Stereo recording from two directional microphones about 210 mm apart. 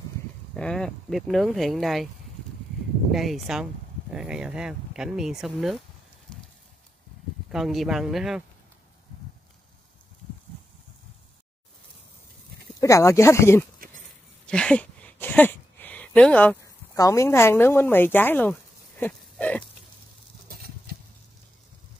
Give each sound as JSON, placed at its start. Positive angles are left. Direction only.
{"t": 0.6, "sound": "speech", "side_deg": 5}
{"t": 3.1, "sound": "speech", "side_deg": 0}
{"t": 7.5, "sound": "speech", "side_deg": 0}
{"t": 12.8, "sound": "speech", "side_deg": 15}
{"t": 14.0, "sound": "a sound", "side_deg": 5}
{"t": 20.4, "sound": "a sound", "side_deg": -45}